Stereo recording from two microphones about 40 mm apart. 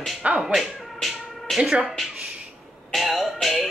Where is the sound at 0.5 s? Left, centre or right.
Centre.